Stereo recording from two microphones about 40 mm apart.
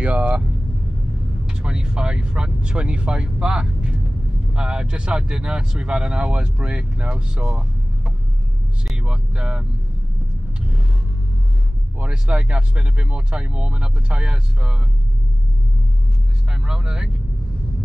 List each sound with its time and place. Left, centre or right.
0.0 s vehicle: right
1.4 s speech: right
12.0 s speech: right
16.5 s speech: centre